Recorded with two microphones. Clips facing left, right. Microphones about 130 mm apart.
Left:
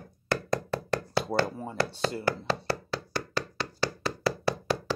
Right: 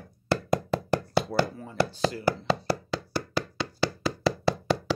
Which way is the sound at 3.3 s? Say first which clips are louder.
Right 2 dB; 15° right (ahead or behind).